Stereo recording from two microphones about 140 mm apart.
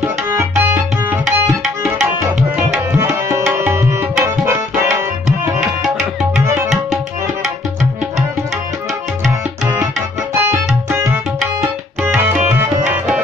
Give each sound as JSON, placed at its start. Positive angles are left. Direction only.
{"t": 0.4, "sound": "tabla", "side_deg": -15}
{"t": 1.2, "sound": "tabla", "side_deg": 0}
{"t": 2.5, "sound": "tabla", "side_deg": -20}
{"t": 10.4, "sound": "tabla", "side_deg": -20}